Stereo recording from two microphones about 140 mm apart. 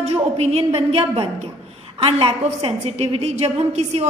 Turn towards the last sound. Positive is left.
turn(degrees=-50)  # may be behind; listen again after turning